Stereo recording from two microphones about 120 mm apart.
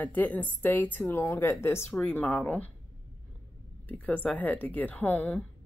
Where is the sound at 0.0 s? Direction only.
15° left (ahead or behind).